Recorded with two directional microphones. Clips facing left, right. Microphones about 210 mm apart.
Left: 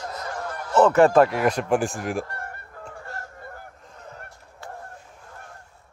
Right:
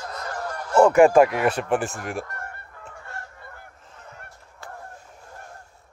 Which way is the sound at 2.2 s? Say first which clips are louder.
Left 1 dB; 30° left (ahead or behind).